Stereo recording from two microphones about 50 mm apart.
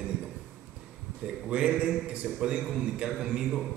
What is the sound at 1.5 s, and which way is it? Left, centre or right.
A man's voice, centre.